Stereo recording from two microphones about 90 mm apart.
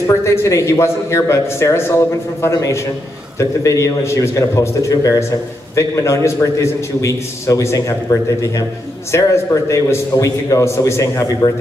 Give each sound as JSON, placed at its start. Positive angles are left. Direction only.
{"t": 0.0, "sound": "a man's voice", "side_deg": 30}